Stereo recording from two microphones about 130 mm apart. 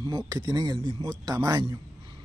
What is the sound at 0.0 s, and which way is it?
Speech, 30° right (ahead or behind).